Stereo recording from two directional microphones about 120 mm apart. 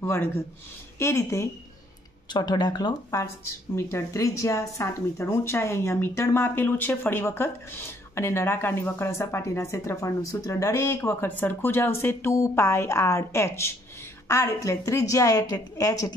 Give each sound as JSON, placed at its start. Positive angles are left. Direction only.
{"t": 0.0, "sound": "speech", "side_deg": 20}
{"t": 2.3, "sound": "speech", "side_deg": 35}